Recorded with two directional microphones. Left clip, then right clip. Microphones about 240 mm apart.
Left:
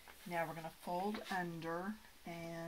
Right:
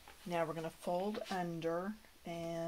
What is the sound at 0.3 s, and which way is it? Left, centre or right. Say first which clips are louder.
Speech: right 4 dB; right.